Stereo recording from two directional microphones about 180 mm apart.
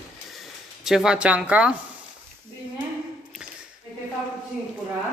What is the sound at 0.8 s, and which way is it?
Speech, 5° right (ahead or behind).